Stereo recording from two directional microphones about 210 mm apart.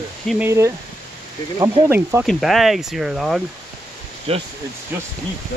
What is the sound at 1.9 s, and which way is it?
Speech, 10° right (ahead or behind).